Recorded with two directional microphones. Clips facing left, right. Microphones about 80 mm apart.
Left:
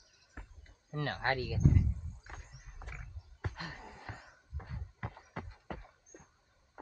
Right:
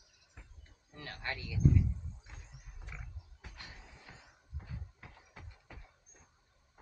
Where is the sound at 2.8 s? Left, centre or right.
Left.